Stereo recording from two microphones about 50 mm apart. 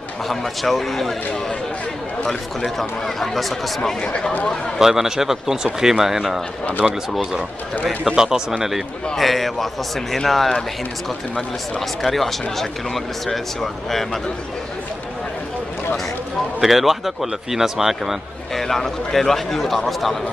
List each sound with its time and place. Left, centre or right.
0.3 s speech: centre
2.6 s speech: centre
4.0 s speech: centre
4.7 s a man's voice: centre
8.2 s a man's voice: centre
16.6 s speech: centre
18.5 s speech: centre